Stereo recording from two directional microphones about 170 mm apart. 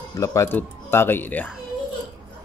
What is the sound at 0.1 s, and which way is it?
Speech, 15° left (ahead or behind).